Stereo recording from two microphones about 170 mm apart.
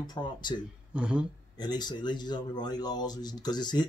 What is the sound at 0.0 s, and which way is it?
Speech, 25° left (ahead or behind).